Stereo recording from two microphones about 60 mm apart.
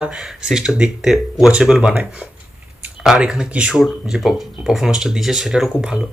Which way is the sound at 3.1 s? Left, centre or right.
Centre.